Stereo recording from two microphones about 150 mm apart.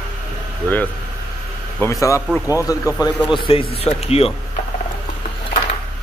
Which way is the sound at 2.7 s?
25° left (ahead or behind).